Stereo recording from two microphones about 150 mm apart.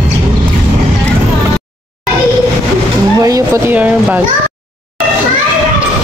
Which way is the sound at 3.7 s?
10° right (ahead or behind).